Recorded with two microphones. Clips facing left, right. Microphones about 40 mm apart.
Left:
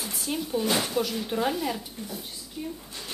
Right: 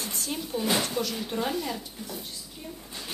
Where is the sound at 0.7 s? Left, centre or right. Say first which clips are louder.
Left 1 dB; centre.